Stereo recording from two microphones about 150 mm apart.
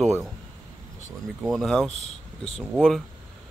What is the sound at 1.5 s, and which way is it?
Speech, centre (ahead or behind).